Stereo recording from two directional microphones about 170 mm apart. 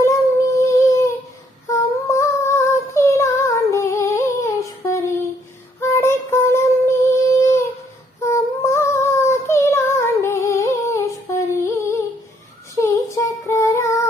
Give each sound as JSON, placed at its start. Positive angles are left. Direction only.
{"t": 0.0, "sound": "child singing", "side_deg": 15}
{"t": 4.8, "sound": "a sound", "side_deg": 20}
{"t": 5.8, "sound": "child singing", "side_deg": 15}